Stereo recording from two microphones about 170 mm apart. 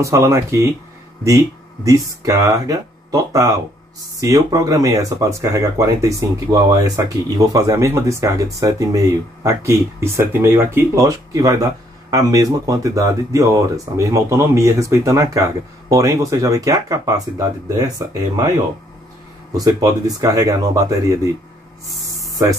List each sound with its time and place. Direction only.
0.0 s speech: 20° right (ahead or behind)
1.9 s speech: 20° right (ahead or behind)
19.5 s speech: 20° right (ahead or behind)